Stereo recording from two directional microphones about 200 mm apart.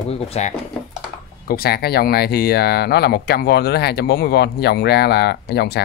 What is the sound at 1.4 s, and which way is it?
Speech, 50° left (ahead or behind).